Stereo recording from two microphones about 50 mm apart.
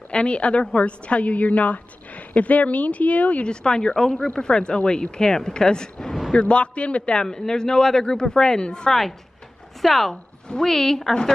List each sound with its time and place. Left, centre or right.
0.1 s a woman's voice: left
3.6 s speech: centre
9.8 s speech: centre